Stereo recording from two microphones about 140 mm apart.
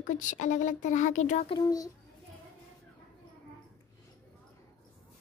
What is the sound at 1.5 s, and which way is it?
Speech, 25° left (ahead or behind).